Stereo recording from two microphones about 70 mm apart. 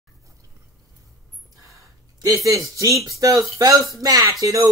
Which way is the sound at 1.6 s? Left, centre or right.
Right.